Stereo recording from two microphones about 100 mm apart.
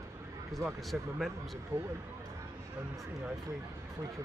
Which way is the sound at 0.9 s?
5° right (ahead or behind).